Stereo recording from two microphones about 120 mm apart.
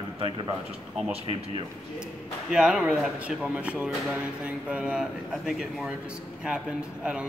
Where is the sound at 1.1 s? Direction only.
50° right (ahead or behind).